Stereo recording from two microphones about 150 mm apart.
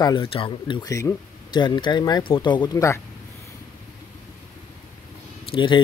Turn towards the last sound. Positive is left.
turn(degrees=35)  # may be behind; listen again after turning